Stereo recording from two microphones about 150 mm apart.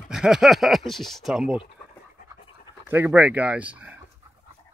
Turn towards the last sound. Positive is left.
turn(degrees=-10)  # may be behind; listen again after turning